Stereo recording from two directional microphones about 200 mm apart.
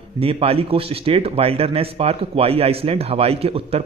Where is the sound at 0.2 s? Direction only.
30° right (ahead or behind).